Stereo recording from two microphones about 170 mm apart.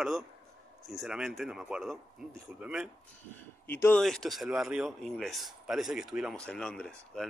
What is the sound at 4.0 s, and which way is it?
A man's voice, centre (ahead or behind).